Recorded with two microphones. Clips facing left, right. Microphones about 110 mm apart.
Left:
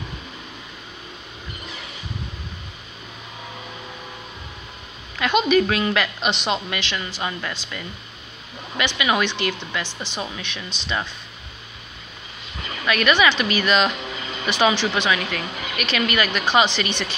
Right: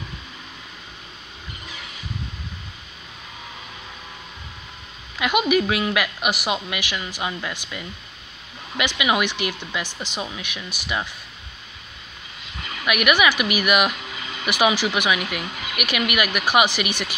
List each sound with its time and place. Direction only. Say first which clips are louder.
5.2 s a woman's voice: left 2 dB; 15° right (ahead or behind)
12.8 s a woman's voice: left 1 dB; 15° right (ahead or behind)
14.0 s a sound: left 3 dB; 40° left (ahead or behind)
14.4 s a woman's voice: even; 15° right (ahead or behind)